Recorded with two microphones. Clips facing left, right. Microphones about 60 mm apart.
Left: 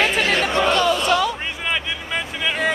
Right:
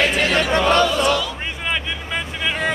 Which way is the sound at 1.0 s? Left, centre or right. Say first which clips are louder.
Left 1 dB; left.